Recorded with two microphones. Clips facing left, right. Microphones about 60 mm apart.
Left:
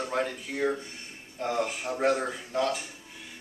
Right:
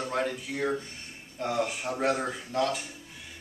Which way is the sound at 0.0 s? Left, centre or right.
Centre.